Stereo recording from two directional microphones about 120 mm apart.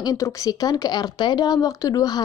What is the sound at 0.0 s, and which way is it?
A woman's voice, 30° left (ahead or behind).